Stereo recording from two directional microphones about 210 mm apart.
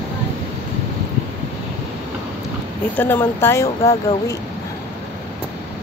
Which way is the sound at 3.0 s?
10° left (ahead or behind).